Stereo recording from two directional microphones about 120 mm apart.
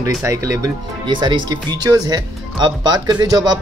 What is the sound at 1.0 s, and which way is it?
Speech, 40° right (ahead or behind).